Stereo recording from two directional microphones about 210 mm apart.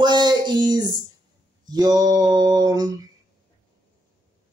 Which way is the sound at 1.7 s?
20° right (ahead or behind).